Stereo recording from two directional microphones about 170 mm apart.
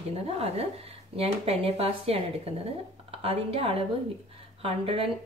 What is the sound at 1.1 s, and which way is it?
A woman's voice, 35° right (ahead or behind).